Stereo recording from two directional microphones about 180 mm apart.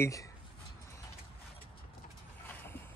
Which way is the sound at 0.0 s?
20° left (ahead or behind).